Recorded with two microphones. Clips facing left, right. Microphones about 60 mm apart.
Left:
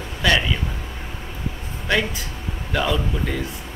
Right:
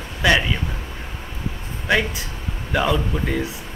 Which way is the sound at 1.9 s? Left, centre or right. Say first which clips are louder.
Right 2 dB; centre.